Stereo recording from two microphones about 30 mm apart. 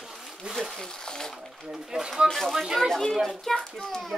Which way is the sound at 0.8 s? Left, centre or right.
Left.